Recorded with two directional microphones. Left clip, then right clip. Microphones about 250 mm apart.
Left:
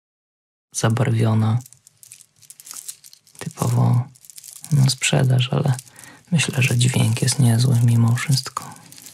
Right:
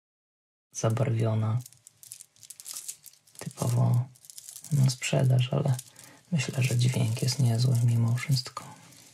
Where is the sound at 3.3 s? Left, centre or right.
Left.